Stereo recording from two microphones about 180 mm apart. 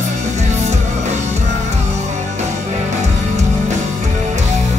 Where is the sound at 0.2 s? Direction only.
40° right (ahead or behind).